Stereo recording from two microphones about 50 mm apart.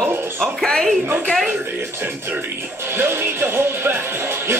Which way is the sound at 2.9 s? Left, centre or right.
Right.